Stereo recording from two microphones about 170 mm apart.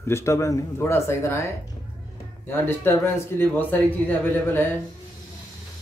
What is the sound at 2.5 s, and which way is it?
Speech, 15° left (ahead or behind).